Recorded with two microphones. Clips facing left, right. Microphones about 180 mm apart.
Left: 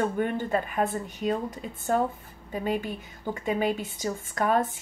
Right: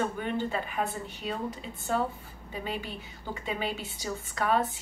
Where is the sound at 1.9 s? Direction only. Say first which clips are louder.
Left 3 dB; 45° left (ahead or behind).